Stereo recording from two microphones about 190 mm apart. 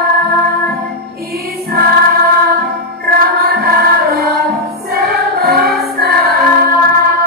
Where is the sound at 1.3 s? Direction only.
55° right (ahead or behind).